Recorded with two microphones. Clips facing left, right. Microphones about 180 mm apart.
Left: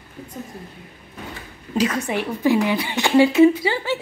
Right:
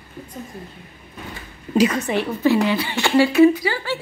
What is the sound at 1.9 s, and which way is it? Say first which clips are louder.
A woman's voice: right 2 dB; 10° left (ahead or behind).